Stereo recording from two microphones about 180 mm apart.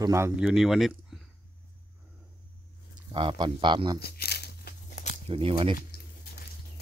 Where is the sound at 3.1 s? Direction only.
25° right (ahead or behind).